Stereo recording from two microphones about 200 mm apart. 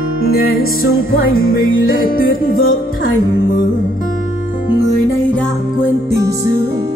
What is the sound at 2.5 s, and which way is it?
Music, 90° left.